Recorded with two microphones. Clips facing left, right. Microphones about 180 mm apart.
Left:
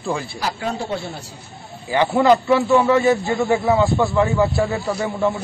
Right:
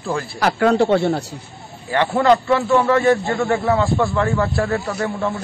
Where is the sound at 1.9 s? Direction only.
Centre (ahead or behind).